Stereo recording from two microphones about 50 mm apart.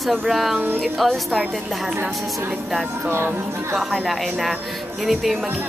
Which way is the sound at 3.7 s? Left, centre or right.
Centre.